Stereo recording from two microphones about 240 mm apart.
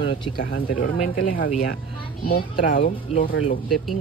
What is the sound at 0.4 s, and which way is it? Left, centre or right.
Speech, left.